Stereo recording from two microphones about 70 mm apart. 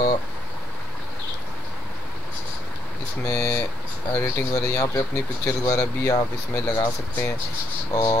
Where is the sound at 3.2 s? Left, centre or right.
Left.